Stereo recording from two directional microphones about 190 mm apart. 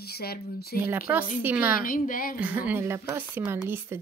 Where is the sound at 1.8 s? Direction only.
45° left (ahead or behind).